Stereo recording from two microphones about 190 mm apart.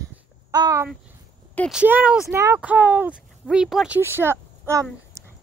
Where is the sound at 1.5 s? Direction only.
Centre (ahead or behind).